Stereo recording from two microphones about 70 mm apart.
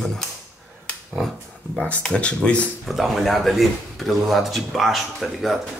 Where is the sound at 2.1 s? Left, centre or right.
Centre.